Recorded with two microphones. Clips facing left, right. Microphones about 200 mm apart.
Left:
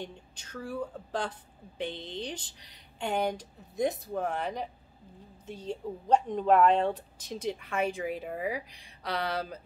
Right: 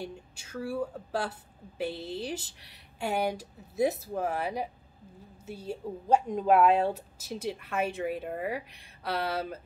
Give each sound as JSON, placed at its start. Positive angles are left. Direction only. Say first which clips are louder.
{"t": 0.0, "sound": "a woman's voice", "louder": "right 2 dB", "side_deg": -10}